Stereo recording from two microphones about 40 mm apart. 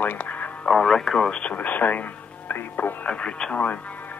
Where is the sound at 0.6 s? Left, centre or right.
Centre.